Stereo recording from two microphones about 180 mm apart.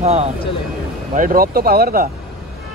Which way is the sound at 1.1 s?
50° right (ahead or behind).